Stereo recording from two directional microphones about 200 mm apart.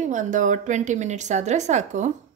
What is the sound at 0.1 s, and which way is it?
A woman's voice, 40° right (ahead or behind).